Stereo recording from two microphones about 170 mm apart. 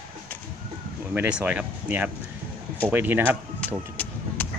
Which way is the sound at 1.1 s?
5° right (ahead or behind).